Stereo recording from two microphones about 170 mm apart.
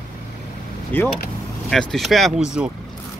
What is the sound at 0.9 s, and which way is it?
Speech, 10° left (ahead or behind).